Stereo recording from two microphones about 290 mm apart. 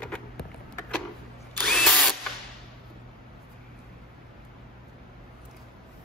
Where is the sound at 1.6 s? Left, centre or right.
Centre.